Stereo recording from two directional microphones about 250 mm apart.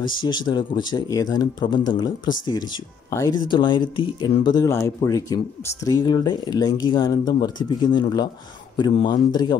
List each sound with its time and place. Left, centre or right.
0.0 s speech: centre